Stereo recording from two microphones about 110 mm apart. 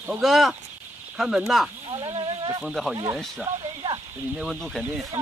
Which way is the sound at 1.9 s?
75° right (ahead or behind).